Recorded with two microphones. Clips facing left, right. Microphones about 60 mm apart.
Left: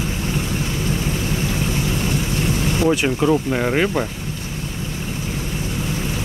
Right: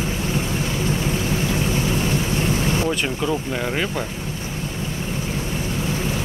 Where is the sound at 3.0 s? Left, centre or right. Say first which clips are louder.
Left 5 dB; centre.